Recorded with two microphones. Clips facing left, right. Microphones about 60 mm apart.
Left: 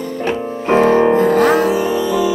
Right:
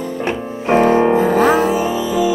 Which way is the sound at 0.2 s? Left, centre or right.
Centre.